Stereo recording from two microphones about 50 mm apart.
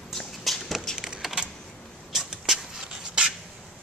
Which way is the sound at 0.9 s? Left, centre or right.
Centre.